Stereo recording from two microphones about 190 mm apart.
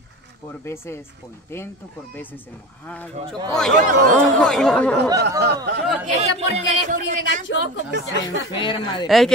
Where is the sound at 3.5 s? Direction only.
5° left (ahead or behind).